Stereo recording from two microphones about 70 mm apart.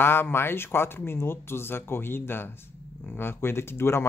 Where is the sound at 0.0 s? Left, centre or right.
Left.